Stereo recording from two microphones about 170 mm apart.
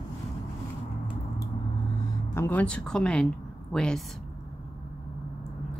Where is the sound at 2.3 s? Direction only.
10° left (ahead or behind).